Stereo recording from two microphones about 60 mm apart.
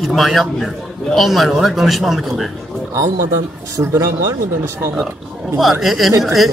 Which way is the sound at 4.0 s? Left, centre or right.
Right.